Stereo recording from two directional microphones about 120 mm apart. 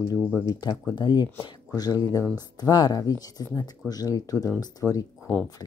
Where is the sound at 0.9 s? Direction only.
35° left (ahead or behind).